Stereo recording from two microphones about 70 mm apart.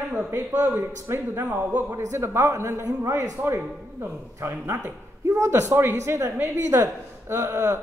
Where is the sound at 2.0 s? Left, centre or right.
Right.